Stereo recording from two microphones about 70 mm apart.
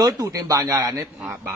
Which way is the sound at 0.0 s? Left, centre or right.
Right.